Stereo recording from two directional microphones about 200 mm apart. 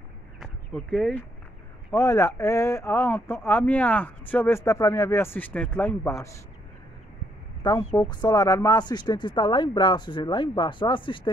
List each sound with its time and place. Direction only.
0.4 s a sound: centre (ahead or behind)
2.0 s speech: 15° left (ahead or behind)
7.6 s speech: 20° left (ahead or behind)